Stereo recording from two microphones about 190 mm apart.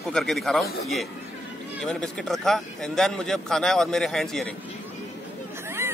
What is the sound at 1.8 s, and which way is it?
A man's voice, 5° left (ahead or behind).